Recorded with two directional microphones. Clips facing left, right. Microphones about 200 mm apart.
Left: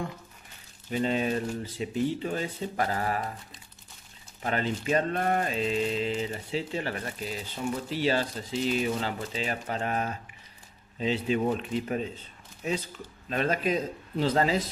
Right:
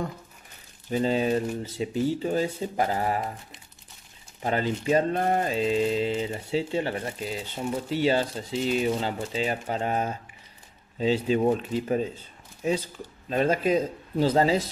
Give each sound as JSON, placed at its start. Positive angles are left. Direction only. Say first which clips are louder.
{"t": 0.9, "sound": "speech", "louder": "right 3 dB", "side_deg": -30}
{"t": 13.3, "sound": "speech", "louder": "right 4 dB", "side_deg": -30}